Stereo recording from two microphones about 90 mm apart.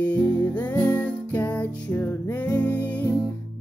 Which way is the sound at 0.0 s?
20° left (ahead or behind).